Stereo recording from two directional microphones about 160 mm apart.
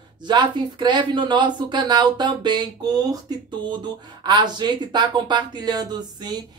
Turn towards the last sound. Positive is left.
turn(degrees=-25)  # may be behind; listen again after turning